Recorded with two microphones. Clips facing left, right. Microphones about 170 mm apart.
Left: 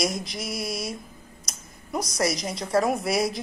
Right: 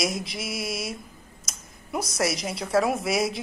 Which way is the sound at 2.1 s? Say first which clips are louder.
Left 1 dB; 5° right (ahead or behind).